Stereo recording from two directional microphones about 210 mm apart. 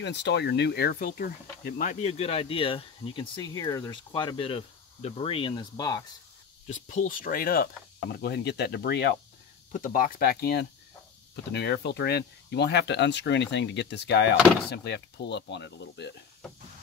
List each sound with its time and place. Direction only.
0.0 s speech: 55° left (ahead or behind); by 6.0 s 20° left (ahead or behind)
6.7 s speech: 35° left (ahead or behind); by 9.2 s 50° left (ahead or behind)
9.7 s speech: 40° left (ahead or behind); by 16.2 s 55° left (ahead or behind)